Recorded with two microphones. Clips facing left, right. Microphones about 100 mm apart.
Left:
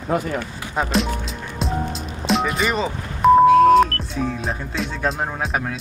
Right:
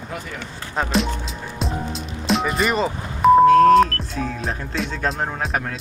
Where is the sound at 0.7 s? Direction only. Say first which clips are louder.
Even; centre (ahead or behind).